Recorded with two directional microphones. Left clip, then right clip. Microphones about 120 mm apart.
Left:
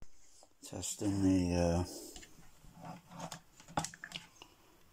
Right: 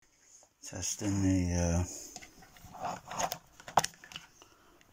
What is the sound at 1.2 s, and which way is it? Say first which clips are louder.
Speech: left 2 dB; 10° left (ahead or behind).